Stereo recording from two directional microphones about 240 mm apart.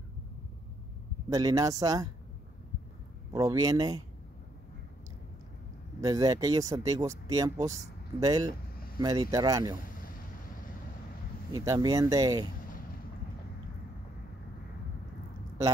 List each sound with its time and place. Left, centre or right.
1.3 s speech: centre
3.3 s speech: centre
5.9 s speech: centre
11.5 s speech: centre